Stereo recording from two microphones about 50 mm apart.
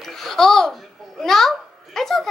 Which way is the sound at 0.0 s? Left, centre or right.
Centre.